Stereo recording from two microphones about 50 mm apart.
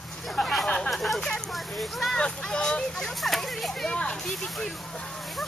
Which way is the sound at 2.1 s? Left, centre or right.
Centre.